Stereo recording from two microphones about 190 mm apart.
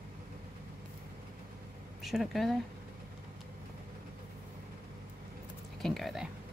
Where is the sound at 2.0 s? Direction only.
Centre (ahead or behind).